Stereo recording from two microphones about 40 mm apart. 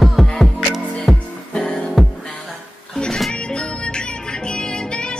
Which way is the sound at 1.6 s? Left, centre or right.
Left.